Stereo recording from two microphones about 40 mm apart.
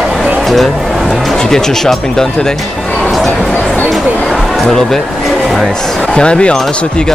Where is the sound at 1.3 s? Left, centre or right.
Centre.